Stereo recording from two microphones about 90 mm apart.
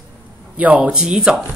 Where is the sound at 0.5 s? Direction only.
15° right (ahead or behind).